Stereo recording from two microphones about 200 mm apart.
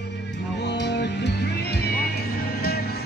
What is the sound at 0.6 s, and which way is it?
Music, 60° left (ahead or behind).